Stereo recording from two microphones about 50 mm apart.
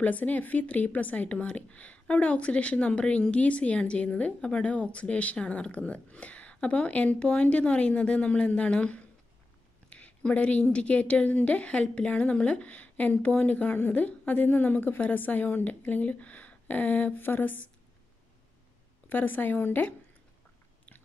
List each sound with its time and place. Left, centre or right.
0.0 s speech: left
19.0 s speech: left